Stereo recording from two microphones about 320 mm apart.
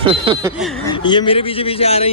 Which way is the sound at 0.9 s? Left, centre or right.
Centre.